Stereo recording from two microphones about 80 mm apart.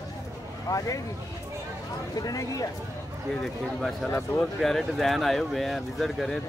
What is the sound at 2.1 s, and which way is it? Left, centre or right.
Speech, left.